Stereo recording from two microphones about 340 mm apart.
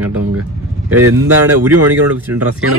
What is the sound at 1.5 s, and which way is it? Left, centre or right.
Speech, right.